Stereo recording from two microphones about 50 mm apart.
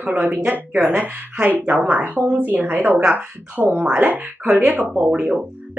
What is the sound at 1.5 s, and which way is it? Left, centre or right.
Speech, right.